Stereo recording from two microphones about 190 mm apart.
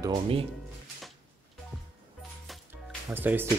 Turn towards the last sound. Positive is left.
turn(degrees=-10)  # may be behind; listen again after turning